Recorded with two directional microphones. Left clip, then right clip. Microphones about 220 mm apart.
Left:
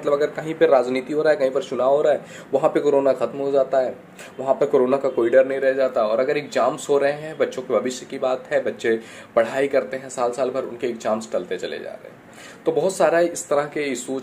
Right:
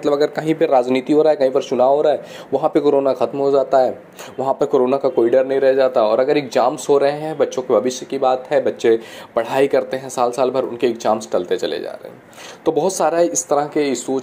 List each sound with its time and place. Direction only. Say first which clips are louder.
0.0 s a man's voice: right 4 dB; 35° right (ahead or behind); by 14.2 s 20° right (ahead or behind)